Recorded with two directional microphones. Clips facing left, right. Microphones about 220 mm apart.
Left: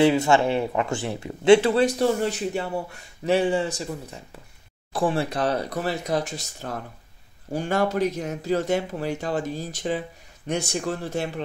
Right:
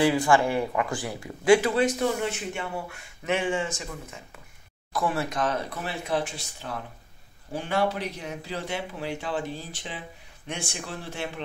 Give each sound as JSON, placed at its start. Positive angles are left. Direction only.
{"t": 0.0, "sound": "speech", "side_deg": 25}